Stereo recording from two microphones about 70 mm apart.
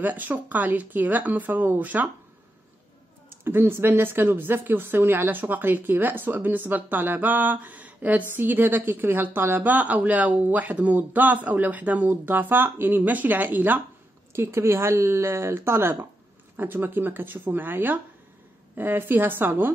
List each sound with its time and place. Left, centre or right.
0.0 s a woman's voice: right
3.3 s a woman's voice: right
14.3 s a woman's voice: right